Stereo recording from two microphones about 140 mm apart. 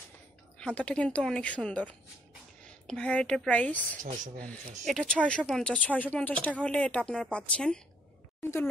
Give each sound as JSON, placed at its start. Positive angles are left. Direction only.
{"t": 0.6, "sound": "a woman's voice", "side_deg": 10}